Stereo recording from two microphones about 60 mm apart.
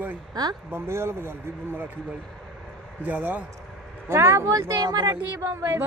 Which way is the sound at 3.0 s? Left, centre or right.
Right.